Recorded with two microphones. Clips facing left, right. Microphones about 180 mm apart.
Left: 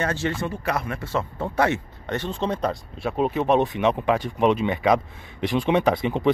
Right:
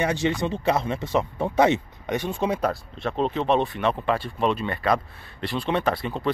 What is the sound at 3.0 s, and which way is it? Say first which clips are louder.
Speech: left 2 dB; 10° left (ahead or behind).